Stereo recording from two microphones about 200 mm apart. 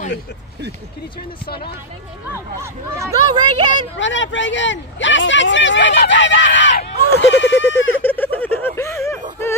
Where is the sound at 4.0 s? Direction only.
65° left (ahead or behind).